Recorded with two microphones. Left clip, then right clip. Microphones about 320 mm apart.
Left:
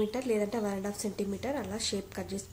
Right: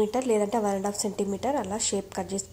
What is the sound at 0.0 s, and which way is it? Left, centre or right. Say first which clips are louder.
A woman's voice: right 6 dB; centre.